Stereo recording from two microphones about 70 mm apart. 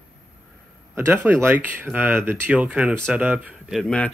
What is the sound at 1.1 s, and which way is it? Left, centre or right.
Speech, right.